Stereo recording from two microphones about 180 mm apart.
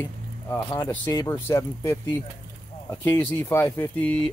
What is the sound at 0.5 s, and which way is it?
Speech, 15° left (ahead or behind).